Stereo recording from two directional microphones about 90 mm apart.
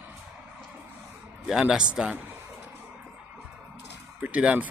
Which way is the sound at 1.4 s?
5° right (ahead or behind).